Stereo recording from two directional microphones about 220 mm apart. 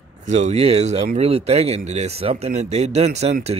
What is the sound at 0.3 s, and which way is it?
Speech, 30° right (ahead or behind).